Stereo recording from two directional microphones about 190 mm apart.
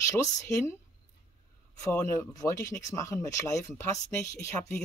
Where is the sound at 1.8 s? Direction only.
15° left (ahead or behind).